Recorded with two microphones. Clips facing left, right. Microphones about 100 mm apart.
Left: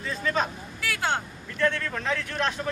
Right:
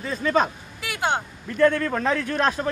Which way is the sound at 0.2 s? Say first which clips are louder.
Right 6 dB; 50° right (ahead or behind).